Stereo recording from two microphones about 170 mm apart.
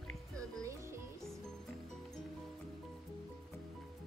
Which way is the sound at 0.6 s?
15° right (ahead or behind).